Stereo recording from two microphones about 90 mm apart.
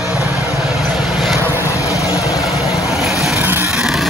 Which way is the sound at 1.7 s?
35° left (ahead or behind).